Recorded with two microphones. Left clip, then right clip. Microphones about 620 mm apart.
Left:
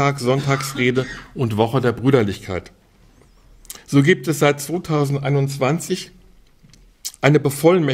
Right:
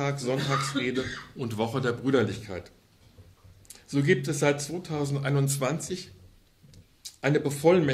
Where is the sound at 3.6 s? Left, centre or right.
Left.